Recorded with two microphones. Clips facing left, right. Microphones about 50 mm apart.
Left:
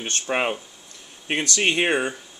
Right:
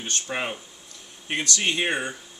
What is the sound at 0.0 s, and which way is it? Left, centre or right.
Speech, left.